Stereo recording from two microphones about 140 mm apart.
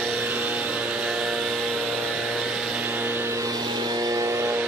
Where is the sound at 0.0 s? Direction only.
10° right (ahead or behind).